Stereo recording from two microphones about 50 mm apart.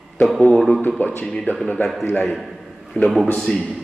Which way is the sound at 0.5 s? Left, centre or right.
Centre.